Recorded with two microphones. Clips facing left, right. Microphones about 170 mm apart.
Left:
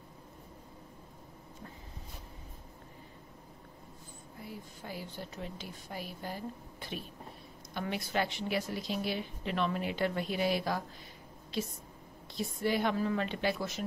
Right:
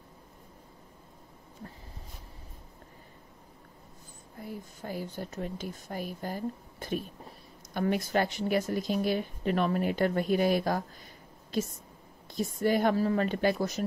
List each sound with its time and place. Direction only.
4.4 s a woman's voice: 45° right (ahead or behind)